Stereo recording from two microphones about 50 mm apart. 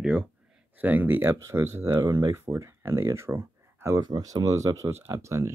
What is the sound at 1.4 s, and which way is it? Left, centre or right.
Speech, right.